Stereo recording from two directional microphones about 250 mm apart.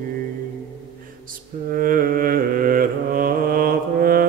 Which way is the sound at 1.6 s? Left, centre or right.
Right.